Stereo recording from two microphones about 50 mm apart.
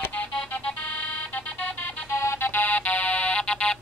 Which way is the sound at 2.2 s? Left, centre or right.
Left.